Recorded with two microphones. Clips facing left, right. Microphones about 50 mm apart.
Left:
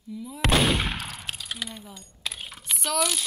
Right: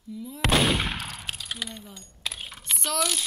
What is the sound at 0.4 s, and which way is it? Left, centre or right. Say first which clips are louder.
Speech: even; centre.